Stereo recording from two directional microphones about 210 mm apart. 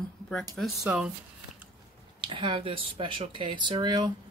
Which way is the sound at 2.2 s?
25° right (ahead or behind).